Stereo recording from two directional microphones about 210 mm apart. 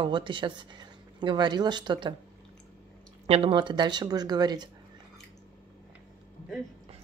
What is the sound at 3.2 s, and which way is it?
Speech, 30° right (ahead or behind).